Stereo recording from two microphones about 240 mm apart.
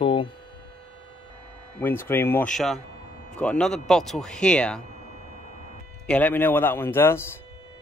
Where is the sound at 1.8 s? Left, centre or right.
Centre.